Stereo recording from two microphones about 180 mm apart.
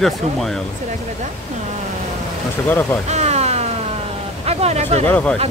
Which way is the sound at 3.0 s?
40° right (ahead or behind).